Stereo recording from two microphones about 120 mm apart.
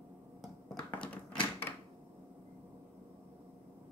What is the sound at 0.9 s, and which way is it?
Typewriter, 10° left (ahead or behind).